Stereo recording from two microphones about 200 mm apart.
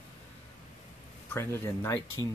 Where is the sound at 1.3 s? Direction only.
10° left (ahead or behind).